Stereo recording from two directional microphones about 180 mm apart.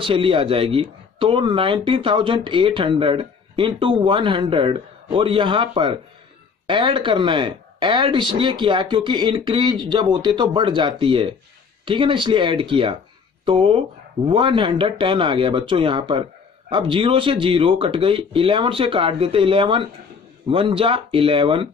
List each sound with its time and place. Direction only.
0.0 s speech: 30° right (ahead or behind)